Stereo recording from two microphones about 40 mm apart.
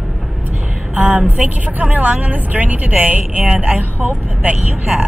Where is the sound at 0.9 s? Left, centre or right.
Right.